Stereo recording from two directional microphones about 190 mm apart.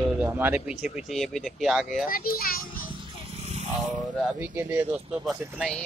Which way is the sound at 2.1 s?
50° left (ahead or behind).